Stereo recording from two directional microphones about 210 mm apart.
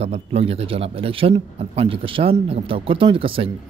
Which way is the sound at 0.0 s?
30° right (ahead or behind).